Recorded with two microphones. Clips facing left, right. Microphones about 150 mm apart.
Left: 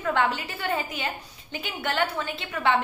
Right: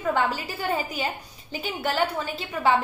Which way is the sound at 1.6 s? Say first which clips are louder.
Right 2 dB; 35° right (ahead or behind).